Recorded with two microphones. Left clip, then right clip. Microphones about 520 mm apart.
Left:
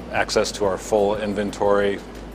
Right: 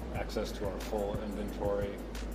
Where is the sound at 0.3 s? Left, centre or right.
Left.